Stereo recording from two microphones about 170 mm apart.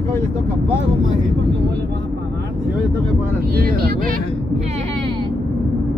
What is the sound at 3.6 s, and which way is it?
Speech, 60° right (ahead or behind).